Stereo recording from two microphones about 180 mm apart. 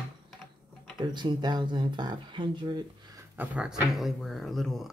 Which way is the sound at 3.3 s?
5° right (ahead or behind).